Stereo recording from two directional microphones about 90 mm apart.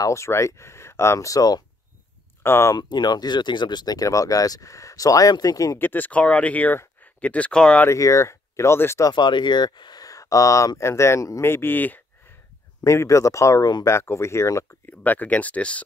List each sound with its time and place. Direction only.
0.0 s speech: 35° left (ahead or behind)
2.4 s speech: 25° left (ahead or behind)
2.7 s speech: 50° left (ahead or behind)
5.8 s speech: 20° left (ahead or behind)
7.9 s speech: 35° left (ahead or behind)
9.1 s speech: 55° left (ahead or behind); by 11.4 s 35° left (ahead or behind)
11.4 s speech: 25° left (ahead or behind)
12.8 s speech: 35° left (ahead or behind)
13.8 s speech: 30° left (ahead or behind)
14.9 s speech: 20° left (ahead or behind)